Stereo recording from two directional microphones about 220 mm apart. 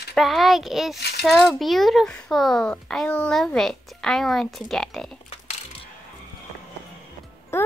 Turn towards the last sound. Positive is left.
turn(degrees=10)  # may be behind; listen again after turning